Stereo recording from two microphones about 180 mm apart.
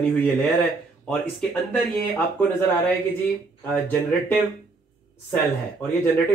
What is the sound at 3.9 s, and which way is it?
Speech, 10° left (ahead or behind).